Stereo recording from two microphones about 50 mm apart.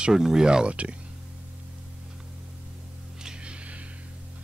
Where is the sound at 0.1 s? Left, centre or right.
Centre.